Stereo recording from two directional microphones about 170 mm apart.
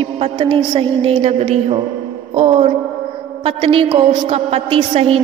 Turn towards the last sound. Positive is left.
turn(degrees=-35)  # may be behind; listen again after turning